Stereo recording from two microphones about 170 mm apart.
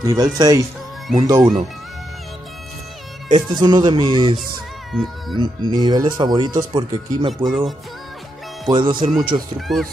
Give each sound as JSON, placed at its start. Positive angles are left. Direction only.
{"t": 0.0, "sound": "speech", "side_deg": -20}
{"t": 3.3, "sound": "speech", "side_deg": -30}
{"t": 4.9, "sound": "speech", "side_deg": 0}
{"t": 5.4, "sound": "speech", "side_deg": -25}
{"t": 7.4, "sound": "speech", "side_deg": 0}
{"t": 8.6, "sound": "speech", "side_deg": -25}
{"t": 9.7, "sound": "speech", "side_deg": 0}